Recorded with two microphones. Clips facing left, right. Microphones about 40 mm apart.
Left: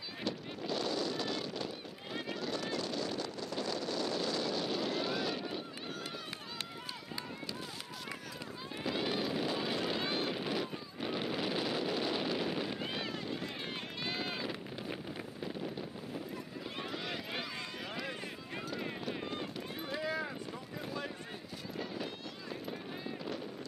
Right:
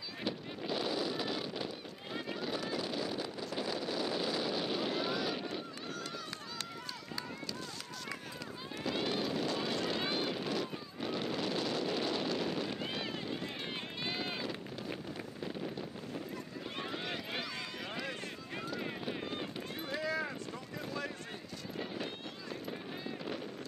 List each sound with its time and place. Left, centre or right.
0.2 s a sound: centre
2.7 s wind noise: centre
8.8 s vehicle: centre
13.1 s run: centre
14.4 s vehicle: centre
15.4 s wind noise: centre
16.7 s run: centre
18.7 s clip-clop: centre
20.0 s boat: centre
21.7 s music: centre